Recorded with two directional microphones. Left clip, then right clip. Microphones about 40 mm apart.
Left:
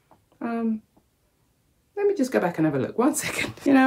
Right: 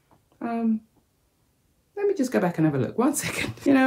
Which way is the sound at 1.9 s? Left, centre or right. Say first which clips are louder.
Left 1 dB; left.